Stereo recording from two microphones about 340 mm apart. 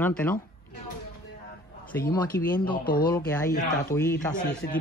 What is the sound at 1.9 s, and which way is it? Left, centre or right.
Speech, centre.